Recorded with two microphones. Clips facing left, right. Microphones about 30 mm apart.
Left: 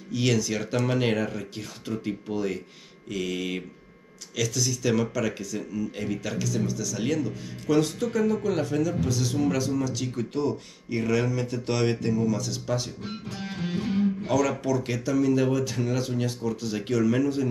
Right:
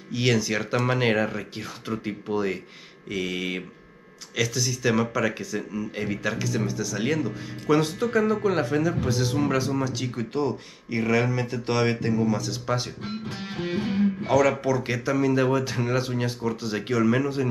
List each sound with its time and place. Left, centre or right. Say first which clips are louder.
0.1 s speech: right 2 dB; right